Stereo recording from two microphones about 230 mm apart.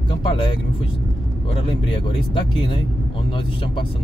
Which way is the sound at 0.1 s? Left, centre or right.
Left.